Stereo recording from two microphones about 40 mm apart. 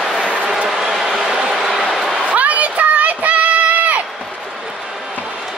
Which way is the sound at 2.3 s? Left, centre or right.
Right.